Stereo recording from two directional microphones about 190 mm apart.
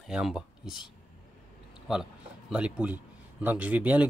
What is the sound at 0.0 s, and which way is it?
Speech, 5° right (ahead or behind).